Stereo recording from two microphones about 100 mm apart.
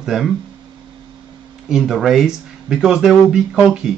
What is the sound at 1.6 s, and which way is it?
Speech, 5° right (ahead or behind).